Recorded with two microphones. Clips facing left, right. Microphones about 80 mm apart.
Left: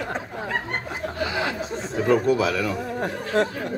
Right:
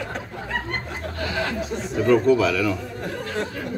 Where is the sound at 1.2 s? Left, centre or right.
Centre.